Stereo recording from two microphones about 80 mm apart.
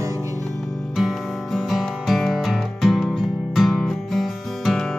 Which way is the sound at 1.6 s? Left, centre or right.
Centre.